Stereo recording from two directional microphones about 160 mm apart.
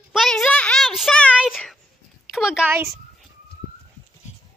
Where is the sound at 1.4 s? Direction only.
Centre (ahead or behind).